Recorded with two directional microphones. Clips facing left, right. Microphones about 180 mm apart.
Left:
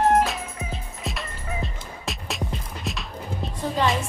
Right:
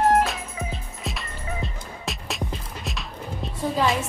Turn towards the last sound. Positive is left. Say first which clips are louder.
# right 1 dB
turn(degrees=0)  # may be behind; listen again after turning